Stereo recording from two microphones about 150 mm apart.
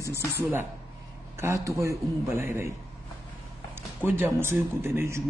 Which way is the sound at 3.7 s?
15° right (ahead or behind).